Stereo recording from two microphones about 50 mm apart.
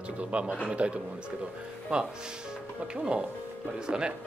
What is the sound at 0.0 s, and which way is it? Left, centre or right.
Speech, right.